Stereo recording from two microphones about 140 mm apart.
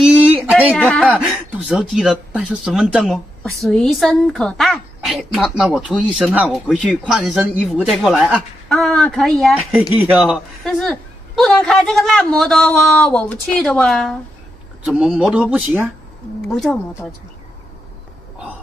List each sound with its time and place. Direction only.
0.0 s a sound: 10° right (ahead or behind)
0.7 s speech: 10° left (ahead or behind)
1.2 s a man's voice: 5° right (ahead or behind)
16.5 s speech: centre (ahead or behind)